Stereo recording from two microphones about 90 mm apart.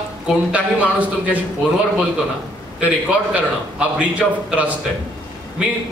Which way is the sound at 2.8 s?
15° right (ahead or behind).